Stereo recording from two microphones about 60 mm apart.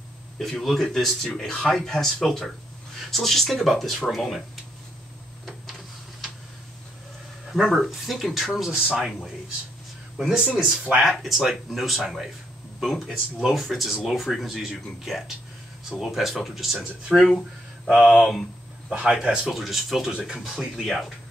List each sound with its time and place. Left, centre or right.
0.4 s speech: centre
7.5 s a man's voice: centre
11.0 s speech: centre
18.9 s a man's voice: centre
19.5 s speech: centre